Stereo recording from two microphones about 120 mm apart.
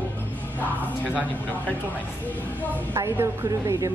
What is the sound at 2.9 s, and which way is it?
Speech, 25° right (ahead or behind).